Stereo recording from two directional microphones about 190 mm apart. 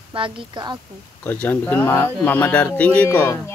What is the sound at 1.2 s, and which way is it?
Speech, 10° left (ahead or behind).